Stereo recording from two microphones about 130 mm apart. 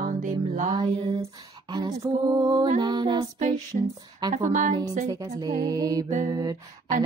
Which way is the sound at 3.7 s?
50° right (ahead or behind).